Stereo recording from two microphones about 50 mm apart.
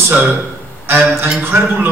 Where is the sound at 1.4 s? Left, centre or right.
Right.